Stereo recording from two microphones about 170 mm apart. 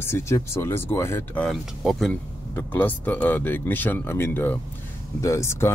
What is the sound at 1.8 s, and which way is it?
Speech, centre (ahead or behind).